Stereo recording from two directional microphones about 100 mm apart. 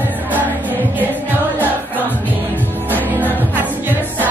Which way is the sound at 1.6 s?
20° left (ahead or behind).